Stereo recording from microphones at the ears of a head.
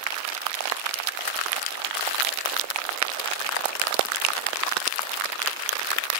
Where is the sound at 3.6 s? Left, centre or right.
Right.